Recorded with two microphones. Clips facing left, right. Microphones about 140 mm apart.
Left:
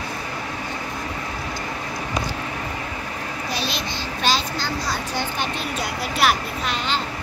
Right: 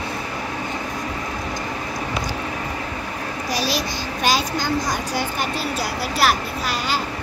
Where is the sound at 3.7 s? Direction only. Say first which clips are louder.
Right 3 dB; 10° right (ahead or behind).